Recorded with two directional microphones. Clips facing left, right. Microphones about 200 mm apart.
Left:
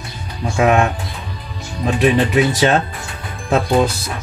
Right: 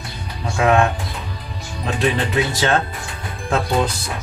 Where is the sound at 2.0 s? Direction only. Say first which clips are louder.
Left 5 dB; 20° left (ahead or behind).